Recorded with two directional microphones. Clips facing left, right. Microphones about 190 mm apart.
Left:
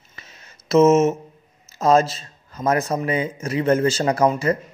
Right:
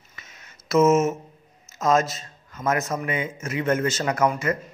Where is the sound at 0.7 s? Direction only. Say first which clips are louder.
Left 4 dB; 25° left (ahead or behind).